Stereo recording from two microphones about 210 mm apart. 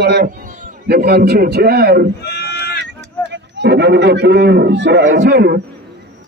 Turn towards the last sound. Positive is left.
turn(degrees=-50)  # may be behind; listen again after turning